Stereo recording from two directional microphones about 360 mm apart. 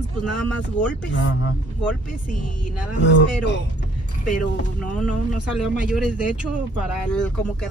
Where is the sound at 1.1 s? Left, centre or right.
Left.